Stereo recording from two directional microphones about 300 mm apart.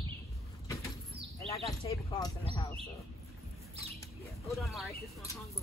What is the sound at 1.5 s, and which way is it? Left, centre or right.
Speech, centre.